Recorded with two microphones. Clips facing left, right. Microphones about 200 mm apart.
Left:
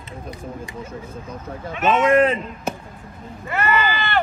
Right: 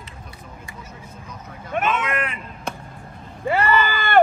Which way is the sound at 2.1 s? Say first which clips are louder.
Left 12 dB; 25° left (ahead or behind).